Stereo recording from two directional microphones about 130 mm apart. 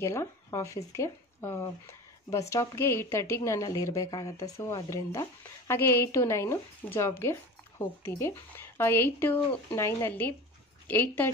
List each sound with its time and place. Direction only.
0.0 s speech: 20° left (ahead or behind)